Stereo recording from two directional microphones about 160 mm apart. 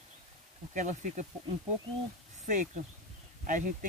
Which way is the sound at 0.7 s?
50° right (ahead or behind).